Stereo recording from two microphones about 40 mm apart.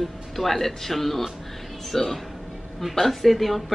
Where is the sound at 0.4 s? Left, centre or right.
Centre.